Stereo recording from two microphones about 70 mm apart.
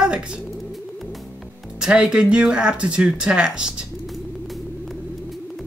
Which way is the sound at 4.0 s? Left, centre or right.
Centre.